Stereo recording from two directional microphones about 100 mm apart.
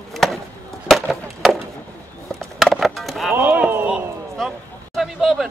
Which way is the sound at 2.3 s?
Centre (ahead or behind).